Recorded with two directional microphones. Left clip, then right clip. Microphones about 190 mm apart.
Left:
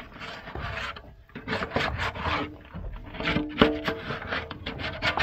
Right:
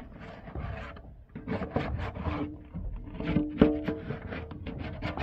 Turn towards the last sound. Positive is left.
turn(degrees=10)  # may be behind; listen again after turning